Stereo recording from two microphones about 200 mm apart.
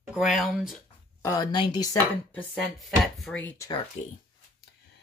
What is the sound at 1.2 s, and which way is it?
Speech, 15° left (ahead or behind).